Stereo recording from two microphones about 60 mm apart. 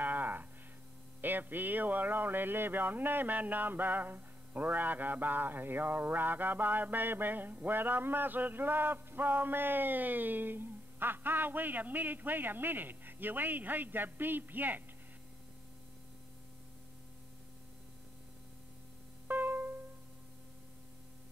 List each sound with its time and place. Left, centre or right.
0.0 s a sound: right
1.2 s speech: right
19.2 s music: right